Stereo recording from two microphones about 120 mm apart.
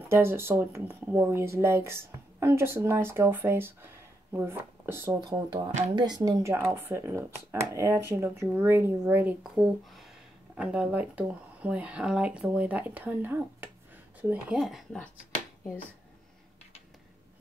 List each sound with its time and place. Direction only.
0.1 s speech: 20° right (ahead or behind)
5.9 s speech: 35° right (ahead or behind); by 14.6 s 10° right (ahead or behind)
14.6 s speech: centre (ahead or behind)